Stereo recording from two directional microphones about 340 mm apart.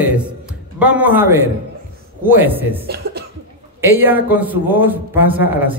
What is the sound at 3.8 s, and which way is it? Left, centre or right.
Speech, centre.